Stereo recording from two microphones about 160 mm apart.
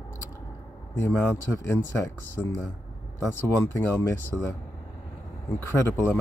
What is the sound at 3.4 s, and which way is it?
Speech, 20° left (ahead or behind).